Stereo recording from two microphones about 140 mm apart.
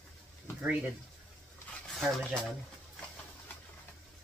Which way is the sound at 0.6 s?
10° right (ahead or behind).